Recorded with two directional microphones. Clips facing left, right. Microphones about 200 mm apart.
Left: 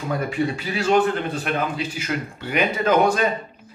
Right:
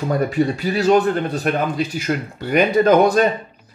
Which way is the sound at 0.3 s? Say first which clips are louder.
Right 5 dB; 40° right (ahead or behind).